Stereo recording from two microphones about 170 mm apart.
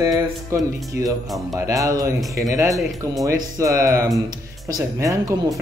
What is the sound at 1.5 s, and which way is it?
Speech, 20° right (ahead or behind).